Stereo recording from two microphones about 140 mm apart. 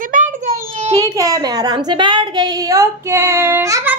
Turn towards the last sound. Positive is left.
turn(degrees=-20)  # may be behind; listen again after turning